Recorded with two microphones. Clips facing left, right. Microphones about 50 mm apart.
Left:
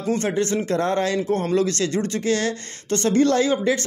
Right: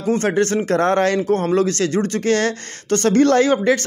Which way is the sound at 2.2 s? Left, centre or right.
Right.